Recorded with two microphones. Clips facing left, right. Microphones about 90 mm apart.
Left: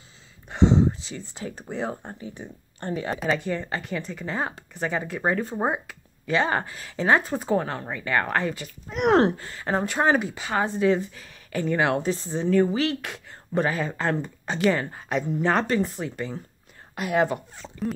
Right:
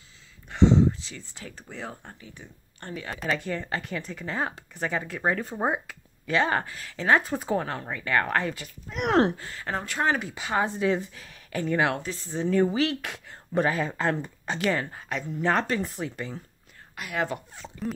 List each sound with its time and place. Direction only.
0.5 s speech: 20° left (ahead or behind)
3.2 s speech: centre (ahead or behind)
7.2 s speech: 5° right (ahead or behind)
9.7 s speech: 20° left (ahead or behind)
10.3 s speech: 5° right (ahead or behind); by 15.4 s 15° left (ahead or behind)
15.4 s speech: centre (ahead or behind)
16.9 s speech: 30° left (ahead or behind)
17.3 s speech: centre (ahead or behind)